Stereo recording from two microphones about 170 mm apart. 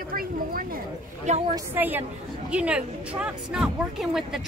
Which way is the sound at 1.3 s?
45° right (ahead or behind).